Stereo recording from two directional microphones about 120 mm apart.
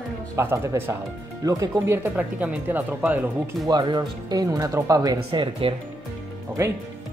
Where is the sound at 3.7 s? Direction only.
40° right (ahead or behind).